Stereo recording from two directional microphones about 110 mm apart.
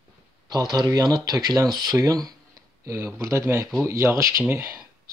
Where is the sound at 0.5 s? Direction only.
35° right (ahead or behind).